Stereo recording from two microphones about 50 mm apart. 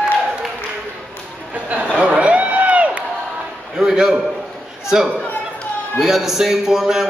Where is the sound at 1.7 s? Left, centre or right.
Right.